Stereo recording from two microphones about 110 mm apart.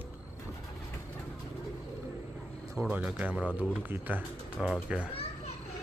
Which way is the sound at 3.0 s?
10° right (ahead or behind).